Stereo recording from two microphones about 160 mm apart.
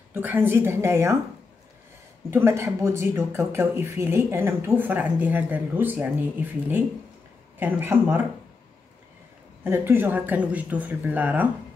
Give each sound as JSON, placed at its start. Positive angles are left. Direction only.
{"t": 0.1, "sound": "speech", "side_deg": -10}
{"t": 2.3, "sound": "speech", "side_deg": -15}
{"t": 7.5, "sound": "speech", "side_deg": -10}
{"t": 9.7, "sound": "speech", "side_deg": -15}